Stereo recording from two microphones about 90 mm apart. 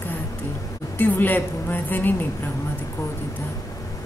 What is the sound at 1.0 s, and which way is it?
A woman's voice, 20° left (ahead or behind).